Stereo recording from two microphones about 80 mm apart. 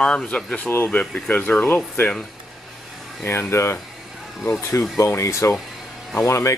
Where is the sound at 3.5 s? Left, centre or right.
Left.